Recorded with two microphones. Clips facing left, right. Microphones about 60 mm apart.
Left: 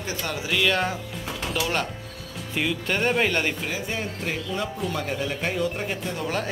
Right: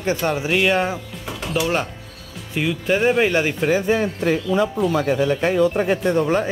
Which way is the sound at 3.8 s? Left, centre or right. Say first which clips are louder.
Right 10 dB; right.